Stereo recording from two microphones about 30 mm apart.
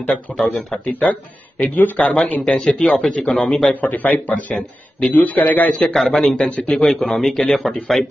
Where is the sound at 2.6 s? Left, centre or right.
Centre.